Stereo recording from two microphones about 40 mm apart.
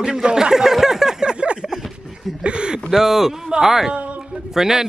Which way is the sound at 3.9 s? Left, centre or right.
Right.